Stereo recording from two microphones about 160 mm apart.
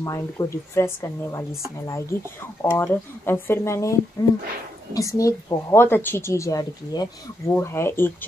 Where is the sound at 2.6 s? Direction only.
15° left (ahead or behind).